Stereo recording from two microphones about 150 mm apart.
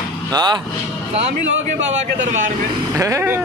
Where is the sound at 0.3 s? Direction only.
30° right (ahead or behind).